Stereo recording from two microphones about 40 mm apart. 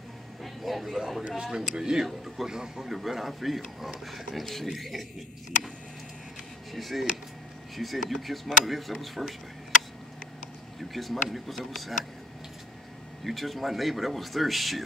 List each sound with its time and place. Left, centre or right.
0.4 s a sound: centre
0.8 s a man's voice: centre
6.7 s speech: centre
10.8 s speech: centre
13.2 s speech: centre